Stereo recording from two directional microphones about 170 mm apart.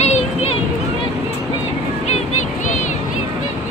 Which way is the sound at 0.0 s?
40° left (ahead or behind).